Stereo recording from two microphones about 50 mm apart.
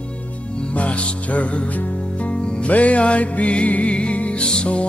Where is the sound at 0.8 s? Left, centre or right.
Left.